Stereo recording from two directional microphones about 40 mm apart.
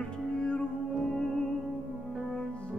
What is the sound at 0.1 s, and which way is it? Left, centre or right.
Music, left.